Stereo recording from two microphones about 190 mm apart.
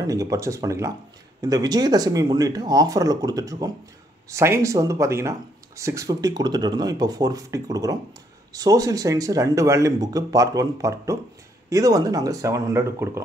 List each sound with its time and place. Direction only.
0.0 s speech: 15° right (ahead or behind)